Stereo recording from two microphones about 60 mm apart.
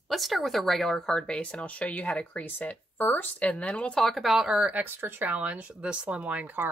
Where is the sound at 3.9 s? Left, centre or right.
Centre.